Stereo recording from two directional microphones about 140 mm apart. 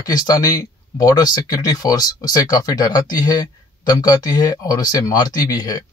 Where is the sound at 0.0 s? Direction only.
25° left (ahead or behind).